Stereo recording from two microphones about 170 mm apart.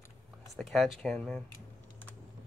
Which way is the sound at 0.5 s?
Centre (ahead or behind).